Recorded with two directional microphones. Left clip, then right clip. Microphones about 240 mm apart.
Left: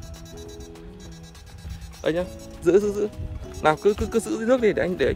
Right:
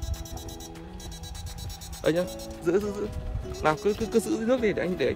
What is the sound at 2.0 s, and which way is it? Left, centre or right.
Speech, centre.